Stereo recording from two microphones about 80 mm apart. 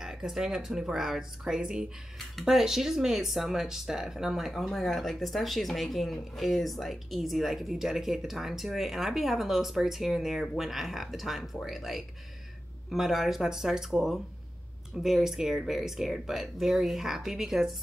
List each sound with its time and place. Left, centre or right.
0.0 s speech: centre